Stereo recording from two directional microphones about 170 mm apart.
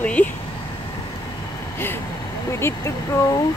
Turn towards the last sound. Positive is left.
turn(degrees=15)  # may be behind; listen again after turning